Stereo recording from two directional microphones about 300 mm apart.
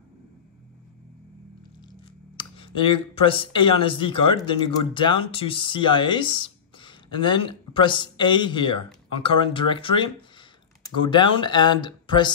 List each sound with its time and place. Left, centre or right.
1.9 s speech: centre